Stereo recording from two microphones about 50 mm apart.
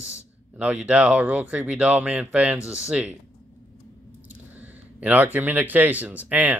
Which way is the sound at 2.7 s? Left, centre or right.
Centre.